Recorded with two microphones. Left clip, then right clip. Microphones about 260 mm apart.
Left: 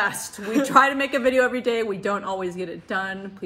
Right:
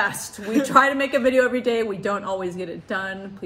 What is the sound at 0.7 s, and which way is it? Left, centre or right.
Speech, centre.